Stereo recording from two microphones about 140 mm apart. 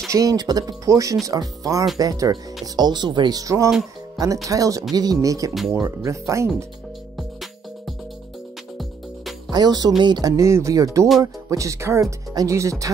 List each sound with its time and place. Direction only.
0.1 s speech: 25° right (ahead or behind)
9.5 s speech: 30° right (ahead or behind)